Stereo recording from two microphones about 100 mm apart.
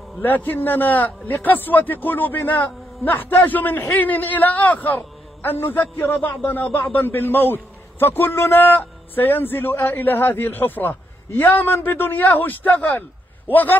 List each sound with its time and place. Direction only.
0.2 s a man's voice: 20° left (ahead or behind)